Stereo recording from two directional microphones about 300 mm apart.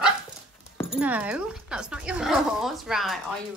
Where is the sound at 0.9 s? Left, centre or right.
Centre.